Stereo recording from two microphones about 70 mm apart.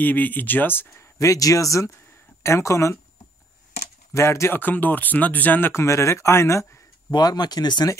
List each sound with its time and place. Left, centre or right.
0.0 s speech: left
1.1 s speech: left
4.1 s speech: left
4.6 s speech: left
5.7 s speech: left
7.1 s speech: left